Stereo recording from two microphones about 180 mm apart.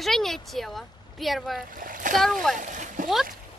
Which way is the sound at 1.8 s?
50° right (ahead or behind).